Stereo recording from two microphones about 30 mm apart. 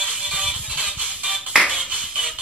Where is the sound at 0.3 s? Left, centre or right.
Right.